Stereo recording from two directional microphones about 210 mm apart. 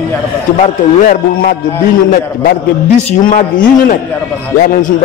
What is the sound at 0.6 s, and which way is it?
A man's voice, 40° left (ahead or behind).